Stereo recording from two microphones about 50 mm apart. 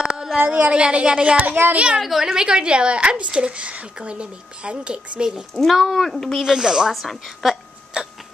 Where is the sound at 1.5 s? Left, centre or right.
Right.